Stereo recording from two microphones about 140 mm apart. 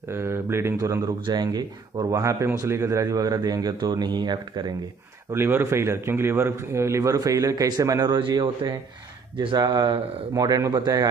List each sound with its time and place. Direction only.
0.1 s speech: 20° right (ahead or behind)
5.3 s speech: 15° right (ahead or behind)